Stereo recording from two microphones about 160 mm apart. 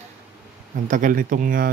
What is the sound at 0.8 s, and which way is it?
Speech, 55° right (ahead or behind).